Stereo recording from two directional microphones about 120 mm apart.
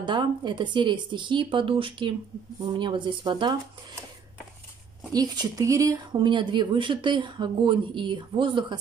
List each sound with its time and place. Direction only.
0.0 s speech: 40° right (ahead or behind)
5.1 s speech: 35° right (ahead or behind)